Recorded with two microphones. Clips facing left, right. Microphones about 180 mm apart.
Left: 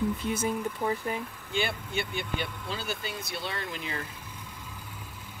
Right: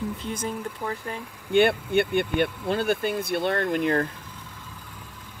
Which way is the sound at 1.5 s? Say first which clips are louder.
Right 12 dB; 60° right (ahead or behind).